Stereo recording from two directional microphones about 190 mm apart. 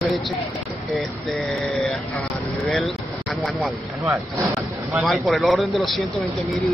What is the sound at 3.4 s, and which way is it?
Speech, centre (ahead or behind).